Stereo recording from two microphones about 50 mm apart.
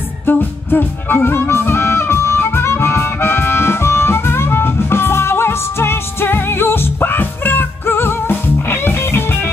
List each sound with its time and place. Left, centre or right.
0.3 s music: left